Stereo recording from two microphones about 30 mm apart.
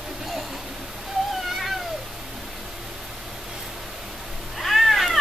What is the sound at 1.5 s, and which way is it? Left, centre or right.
Cat, centre.